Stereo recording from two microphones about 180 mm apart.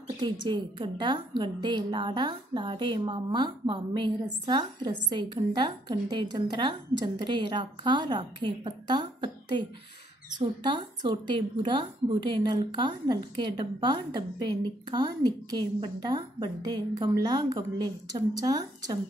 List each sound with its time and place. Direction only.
0.2 s a woman's voice: 25° right (ahead or behind)